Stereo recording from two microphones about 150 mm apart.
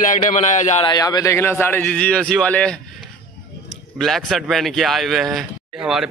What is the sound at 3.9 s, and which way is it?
Speech, centre (ahead or behind).